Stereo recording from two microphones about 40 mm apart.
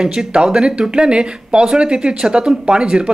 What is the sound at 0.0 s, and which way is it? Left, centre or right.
Speech, centre.